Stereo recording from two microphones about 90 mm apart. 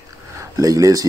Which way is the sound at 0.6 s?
40° right (ahead or behind).